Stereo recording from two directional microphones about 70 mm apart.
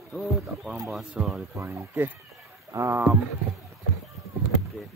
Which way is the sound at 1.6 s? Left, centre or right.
Right.